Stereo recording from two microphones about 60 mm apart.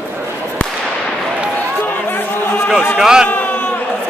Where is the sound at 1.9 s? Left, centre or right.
Left.